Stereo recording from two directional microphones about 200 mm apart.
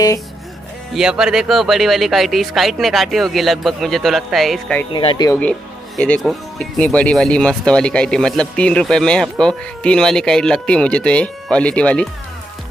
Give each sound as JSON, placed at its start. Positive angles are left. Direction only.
{"t": 0.9, "sound": "speech", "side_deg": -5}
{"t": 4.9, "sound": "speech", "side_deg": 20}
{"t": 5.4, "sound": "speech", "side_deg": 5}